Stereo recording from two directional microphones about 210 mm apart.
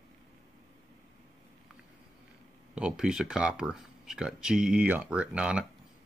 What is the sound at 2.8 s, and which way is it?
Speech, 5° right (ahead or behind).